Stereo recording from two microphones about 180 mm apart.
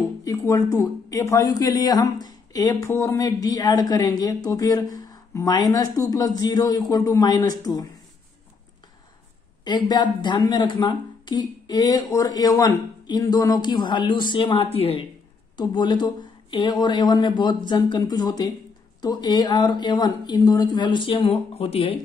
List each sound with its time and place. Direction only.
0.2 s a sound: 15° left (ahead or behind)
0.7 s a woman's voice: 15° left (ahead or behind)
9.7 s a woman's voice: 25° left (ahead or behind)